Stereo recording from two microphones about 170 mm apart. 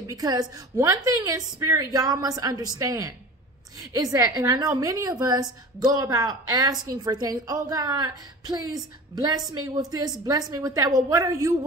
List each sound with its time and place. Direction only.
0.0 s a woman's voice: 20° right (ahead or behind)